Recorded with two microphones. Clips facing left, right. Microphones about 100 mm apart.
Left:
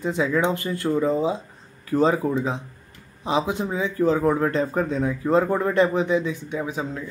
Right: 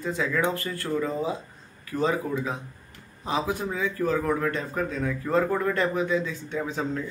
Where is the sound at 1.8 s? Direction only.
30° left (ahead or behind).